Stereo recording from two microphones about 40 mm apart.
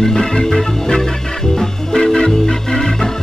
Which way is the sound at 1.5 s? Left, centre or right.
Centre.